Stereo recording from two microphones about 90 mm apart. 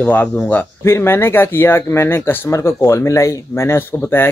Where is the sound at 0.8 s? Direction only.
25° left (ahead or behind).